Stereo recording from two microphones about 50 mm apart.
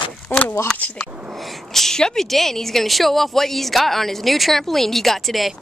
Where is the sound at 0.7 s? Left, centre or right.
Left.